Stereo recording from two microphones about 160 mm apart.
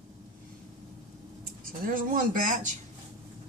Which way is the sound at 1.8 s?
60° right (ahead or behind).